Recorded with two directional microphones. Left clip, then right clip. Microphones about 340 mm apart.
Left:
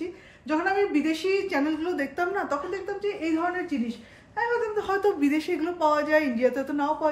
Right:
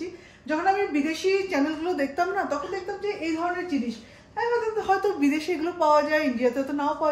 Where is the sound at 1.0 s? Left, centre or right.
Centre.